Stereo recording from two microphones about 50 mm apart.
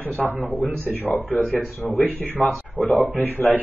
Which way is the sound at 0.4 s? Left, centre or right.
Left.